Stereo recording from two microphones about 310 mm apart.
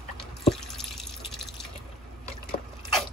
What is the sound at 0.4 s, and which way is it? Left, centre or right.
Drip, centre.